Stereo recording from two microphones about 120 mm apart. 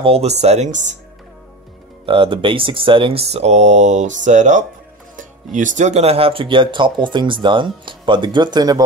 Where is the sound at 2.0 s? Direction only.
45° right (ahead or behind).